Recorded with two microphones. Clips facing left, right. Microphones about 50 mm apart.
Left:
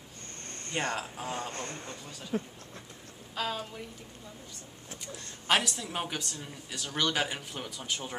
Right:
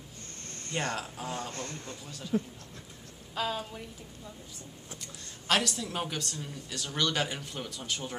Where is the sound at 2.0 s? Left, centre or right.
Centre.